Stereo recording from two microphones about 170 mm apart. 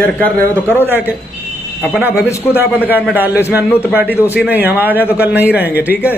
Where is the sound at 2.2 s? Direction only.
15° left (ahead or behind).